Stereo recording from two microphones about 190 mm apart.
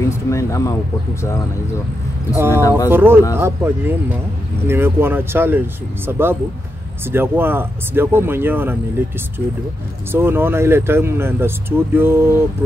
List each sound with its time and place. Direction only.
0.3 s speech: 15° left (ahead or behind)
2.3 s speech: 10° right (ahead or behind)
10.1 s speech: 10° right (ahead or behind)